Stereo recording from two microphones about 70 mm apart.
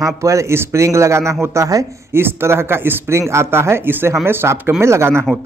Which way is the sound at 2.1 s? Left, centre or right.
Right.